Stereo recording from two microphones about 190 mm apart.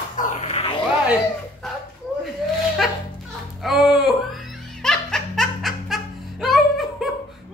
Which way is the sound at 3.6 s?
Centre (ahead or behind).